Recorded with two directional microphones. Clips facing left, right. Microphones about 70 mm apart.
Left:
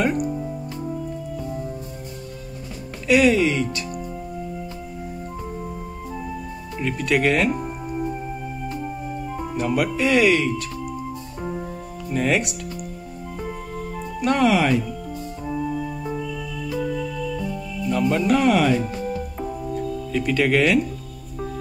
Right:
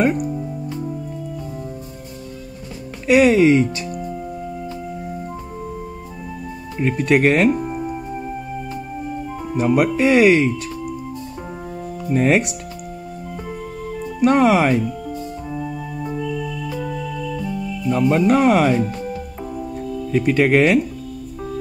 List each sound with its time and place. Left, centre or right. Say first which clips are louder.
3.1 s speech: right 5 dB; right
6.8 s speech: right 5 dB; right
7.7 s music: right 4 dB; centre
9.6 s speech: right 6 dB; right
12.1 s speech: right 5 dB; right
14.2 s speech: right 4 dB; right
17.9 s speech: right 4 dB; right
20.1 s speech: right 5 dB; right